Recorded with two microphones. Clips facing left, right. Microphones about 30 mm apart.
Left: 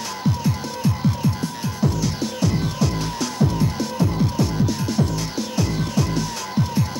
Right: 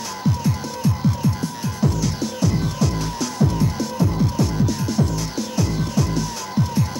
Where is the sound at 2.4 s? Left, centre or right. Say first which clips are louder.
Right 1 dB; left.